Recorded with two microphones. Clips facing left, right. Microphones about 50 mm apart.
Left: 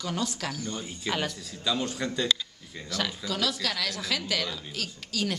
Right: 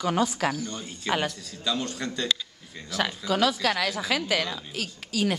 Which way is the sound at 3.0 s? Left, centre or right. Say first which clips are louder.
Right 8 dB; right.